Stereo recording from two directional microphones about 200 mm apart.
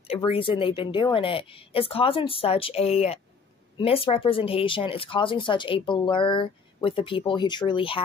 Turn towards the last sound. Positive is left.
turn(degrees=25)  # may be behind; listen again after turning